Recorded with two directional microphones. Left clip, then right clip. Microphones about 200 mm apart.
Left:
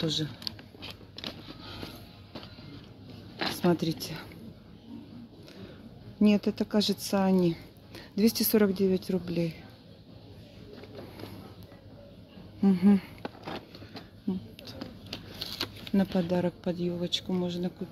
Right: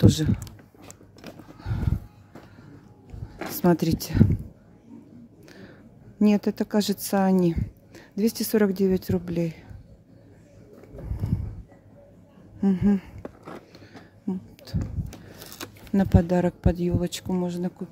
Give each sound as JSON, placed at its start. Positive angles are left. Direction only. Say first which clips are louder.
{"t": 0.0, "sound": "speech", "louder": "right 7 dB", "side_deg": -35}
{"t": 3.3, "sound": "speech", "louder": "right 4 dB", "side_deg": -30}
{"t": 6.1, "sound": "speech", "louder": "right 3 dB", "side_deg": -25}
{"t": 7.9, "sound": "speech", "louder": "right 1 dB", "side_deg": -15}
{"t": 12.5, "sound": "a sound", "louder": "right 1 dB", "side_deg": -10}
{"t": 14.2, "sound": "a sound", "louder": "right 3 dB", "side_deg": -25}
{"t": 15.4, "sound": "speech", "louder": "left 5 dB", "side_deg": -25}